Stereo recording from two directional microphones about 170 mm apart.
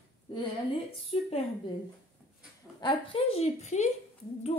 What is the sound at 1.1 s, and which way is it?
Speech, 35° left (ahead or behind).